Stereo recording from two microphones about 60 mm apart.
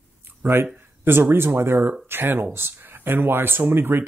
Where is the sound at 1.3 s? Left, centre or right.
Right.